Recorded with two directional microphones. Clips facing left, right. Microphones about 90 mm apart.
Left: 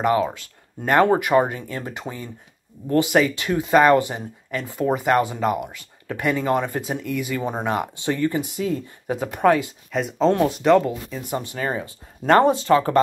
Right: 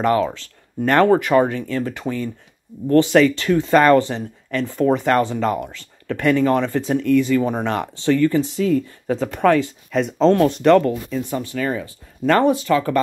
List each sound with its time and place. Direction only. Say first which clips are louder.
0.0 s speech: right 2 dB; 10° left (ahead or behind)
11.3 s speech: even; 30° left (ahead or behind)